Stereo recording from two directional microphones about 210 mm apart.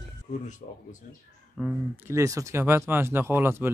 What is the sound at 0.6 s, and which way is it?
Speech, 35° left (ahead or behind).